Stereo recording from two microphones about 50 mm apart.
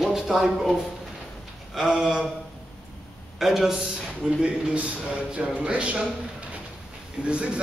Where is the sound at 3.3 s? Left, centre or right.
Centre.